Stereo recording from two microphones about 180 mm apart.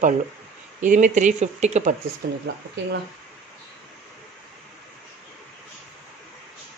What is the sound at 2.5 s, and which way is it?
Speech, 70° right (ahead or behind).